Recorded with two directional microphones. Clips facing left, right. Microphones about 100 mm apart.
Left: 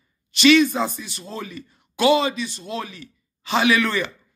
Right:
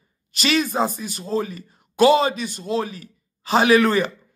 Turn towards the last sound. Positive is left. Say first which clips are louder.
# right 4 dB
turn(degrees=-40)  # may be behind; listen again after turning